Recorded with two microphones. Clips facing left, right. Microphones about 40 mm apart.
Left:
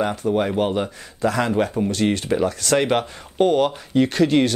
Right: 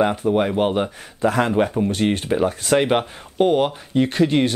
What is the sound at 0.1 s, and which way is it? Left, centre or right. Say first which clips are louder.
Speech: right 2 dB; centre.